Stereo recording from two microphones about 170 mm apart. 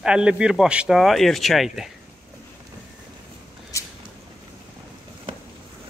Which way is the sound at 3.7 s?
15° left (ahead or behind).